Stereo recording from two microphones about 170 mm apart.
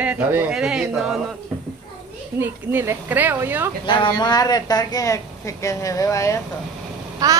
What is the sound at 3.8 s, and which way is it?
Speech, 30° left (ahead or behind).